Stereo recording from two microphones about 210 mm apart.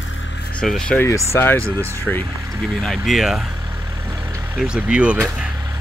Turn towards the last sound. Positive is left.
turn(degrees=-5)  # may be behind; listen again after turning